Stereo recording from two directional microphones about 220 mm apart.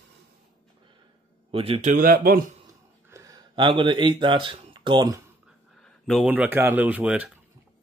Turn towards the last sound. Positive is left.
turn(degrees=-5)  # may be behind; listen again after turning